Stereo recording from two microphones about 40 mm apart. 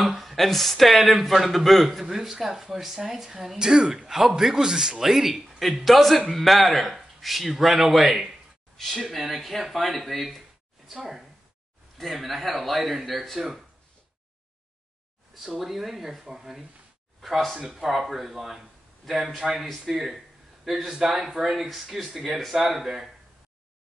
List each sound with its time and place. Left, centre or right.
0.0 s a man's voice: centre
8.7 s a man's voice: centre
15.3 s a man's voice: centre
17.6 s a man's voice: centre
20.9 s speech: centre
21.2 s a man's voice: centre